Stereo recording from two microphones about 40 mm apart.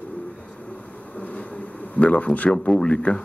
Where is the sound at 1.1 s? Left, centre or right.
Left.